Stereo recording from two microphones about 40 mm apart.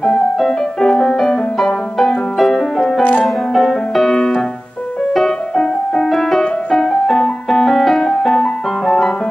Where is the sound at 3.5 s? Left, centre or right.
Centre.